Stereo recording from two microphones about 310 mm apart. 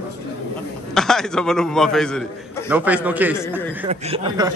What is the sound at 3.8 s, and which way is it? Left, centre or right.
Speech, centre.